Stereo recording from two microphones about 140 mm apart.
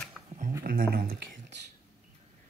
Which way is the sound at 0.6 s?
90° right.